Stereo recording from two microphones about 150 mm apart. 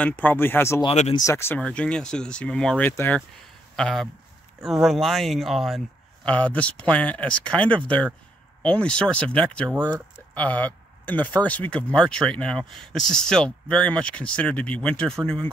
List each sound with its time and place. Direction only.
0.0 s speech: 10° left (ahead or behind)
3.7 s speech: 5° left (ahead or behind)